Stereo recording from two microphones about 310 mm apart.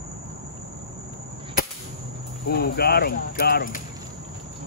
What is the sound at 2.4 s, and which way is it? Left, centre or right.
Speech, left.